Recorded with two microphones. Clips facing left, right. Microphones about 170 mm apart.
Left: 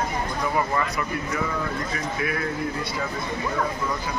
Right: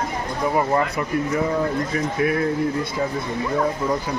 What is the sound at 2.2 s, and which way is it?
Speech, 45° right (ahead or behind).